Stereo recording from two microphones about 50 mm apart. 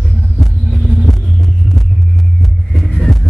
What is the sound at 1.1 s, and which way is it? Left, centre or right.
Heart sounds, centre.